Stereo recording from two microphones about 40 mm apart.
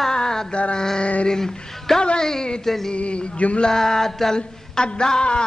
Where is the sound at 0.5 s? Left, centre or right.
Left.